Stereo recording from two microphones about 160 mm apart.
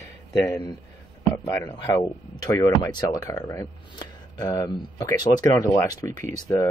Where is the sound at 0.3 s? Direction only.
25° left (ahead or behind).